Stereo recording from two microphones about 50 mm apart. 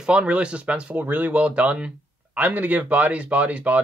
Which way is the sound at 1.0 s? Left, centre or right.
Right.